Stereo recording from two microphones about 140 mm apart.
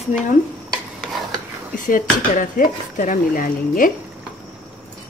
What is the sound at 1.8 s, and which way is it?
Speech, 75° left (ahead or behind).